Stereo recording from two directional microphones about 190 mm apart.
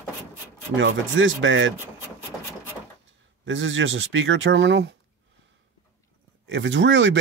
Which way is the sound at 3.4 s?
90° right.